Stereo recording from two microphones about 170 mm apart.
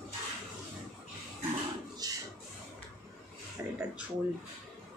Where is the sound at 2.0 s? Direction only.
20° right (ahead or behind).